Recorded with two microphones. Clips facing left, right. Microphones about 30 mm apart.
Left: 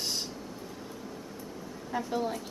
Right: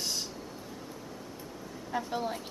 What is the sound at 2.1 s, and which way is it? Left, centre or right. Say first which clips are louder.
Speech: left 2 dB; centre.